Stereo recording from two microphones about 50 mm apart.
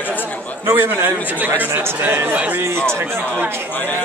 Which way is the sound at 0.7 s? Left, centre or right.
Right.